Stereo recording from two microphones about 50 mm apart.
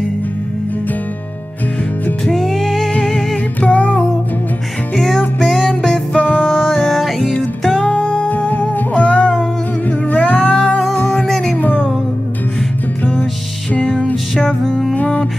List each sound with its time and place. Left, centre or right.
2.3 s music: centre
2.9 s music: centre
3.6 s music: left
4.9 s music: centre
6.1 s music: left
6.4 s music: centre
7.8 s music: left
11.2 s music: centre
11.5 s music: left
13.7 s music: left
14.3 s music: centre
15.0 s music: left